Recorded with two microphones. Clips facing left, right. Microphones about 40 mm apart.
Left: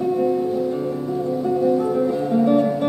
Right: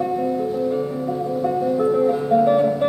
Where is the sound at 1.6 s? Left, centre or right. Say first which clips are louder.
Right 2 dB; centre.